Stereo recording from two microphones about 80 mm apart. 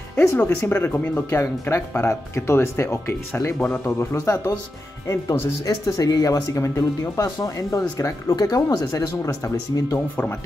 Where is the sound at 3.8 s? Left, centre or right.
Left.